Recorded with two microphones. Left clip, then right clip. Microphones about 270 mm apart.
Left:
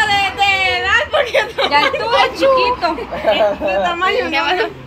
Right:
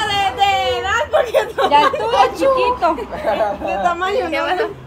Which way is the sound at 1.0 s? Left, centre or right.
Right.